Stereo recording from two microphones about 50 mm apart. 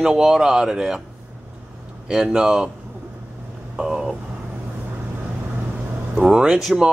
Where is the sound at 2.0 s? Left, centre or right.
Centre.